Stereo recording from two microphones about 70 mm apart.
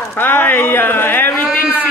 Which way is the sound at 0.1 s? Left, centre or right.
Left.